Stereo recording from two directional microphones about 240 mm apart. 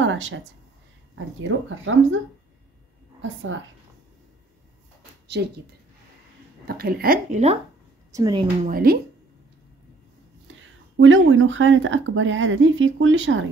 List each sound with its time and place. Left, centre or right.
0.0 s a sound: right
1.1 s speech: right
5.4 s speech: right
6.7 s a woman's voice: right
8.1 s a woman's voice: centre
8.6 s a woman's voice: right
11.0 s speech: right